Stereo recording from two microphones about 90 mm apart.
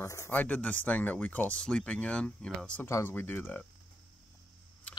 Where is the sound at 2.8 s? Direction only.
25° left (ahead or behind).